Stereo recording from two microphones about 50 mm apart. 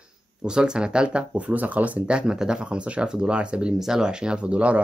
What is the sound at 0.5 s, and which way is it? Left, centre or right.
Speech, centre.